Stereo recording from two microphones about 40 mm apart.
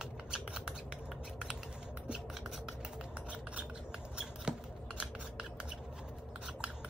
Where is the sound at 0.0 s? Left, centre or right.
Right.